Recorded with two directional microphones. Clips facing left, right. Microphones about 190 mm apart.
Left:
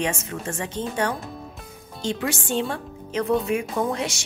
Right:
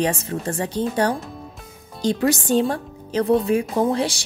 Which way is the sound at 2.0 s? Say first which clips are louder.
Right 7 dB; 40° right (ahead or behind).